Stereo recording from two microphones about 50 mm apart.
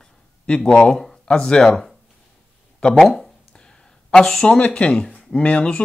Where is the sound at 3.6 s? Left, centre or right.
Centre.